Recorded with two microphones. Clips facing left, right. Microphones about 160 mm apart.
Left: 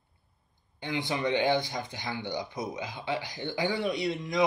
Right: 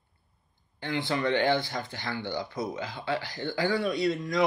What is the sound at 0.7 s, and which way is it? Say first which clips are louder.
Speech: right 2 dB; 15° left (ahead or behind).